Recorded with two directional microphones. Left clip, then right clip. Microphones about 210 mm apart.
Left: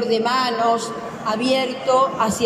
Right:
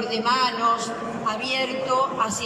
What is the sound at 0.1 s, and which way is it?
A woman's voice, 35° left (ahead or behind).